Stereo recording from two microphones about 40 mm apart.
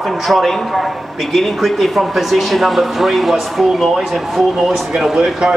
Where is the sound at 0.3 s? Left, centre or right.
Centre.